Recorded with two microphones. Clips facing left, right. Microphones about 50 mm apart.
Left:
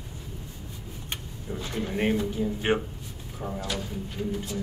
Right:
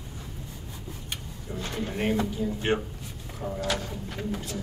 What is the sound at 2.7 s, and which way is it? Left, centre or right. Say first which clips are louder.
Speech: left 2 dB; centre.